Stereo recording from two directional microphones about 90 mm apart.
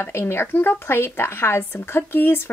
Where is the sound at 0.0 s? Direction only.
25° left (ahead or behind).